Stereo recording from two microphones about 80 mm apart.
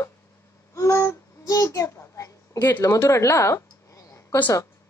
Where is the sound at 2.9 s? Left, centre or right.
Left.